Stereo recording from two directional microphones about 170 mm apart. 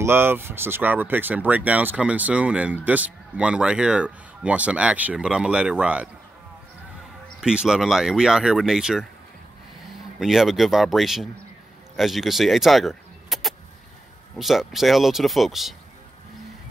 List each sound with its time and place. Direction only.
0.0 s speech: 15° right (ahead or behind)
7.3 s speech: 5° right (ahead or behind)
10.1 s speech: centre (ahead or behind)